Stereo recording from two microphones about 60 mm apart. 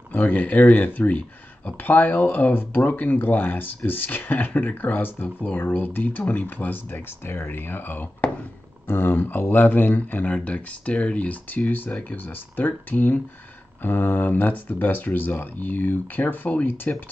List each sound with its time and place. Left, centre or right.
0.1 s speech: left